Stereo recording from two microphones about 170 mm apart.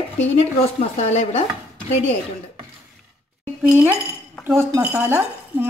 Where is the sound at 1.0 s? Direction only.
40° left (ahead or behind).